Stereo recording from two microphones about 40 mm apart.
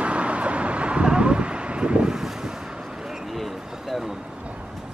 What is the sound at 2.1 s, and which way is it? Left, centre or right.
Vehicle, centre.